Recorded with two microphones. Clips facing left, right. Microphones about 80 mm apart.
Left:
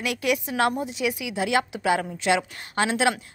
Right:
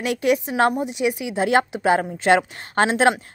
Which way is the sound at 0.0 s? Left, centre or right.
Right.